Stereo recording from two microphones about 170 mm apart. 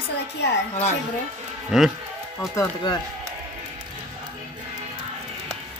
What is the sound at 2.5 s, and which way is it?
Speech, 20° left (ahead or behind).